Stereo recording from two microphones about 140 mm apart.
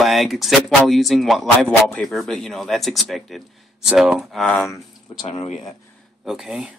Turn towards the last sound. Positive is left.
turn(degrees=-5)  # may be behind; listen again after turning